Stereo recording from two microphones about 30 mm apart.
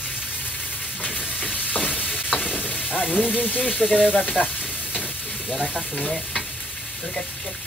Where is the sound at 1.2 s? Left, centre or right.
Right.